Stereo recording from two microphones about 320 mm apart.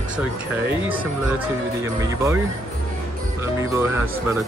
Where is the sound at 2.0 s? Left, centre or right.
Centre.